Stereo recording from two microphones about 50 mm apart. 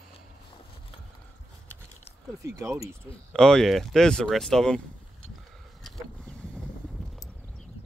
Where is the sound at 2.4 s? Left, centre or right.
Right.